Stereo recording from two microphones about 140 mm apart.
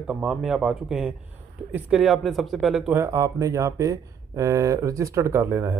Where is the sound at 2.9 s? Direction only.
20° right (ahead or behind).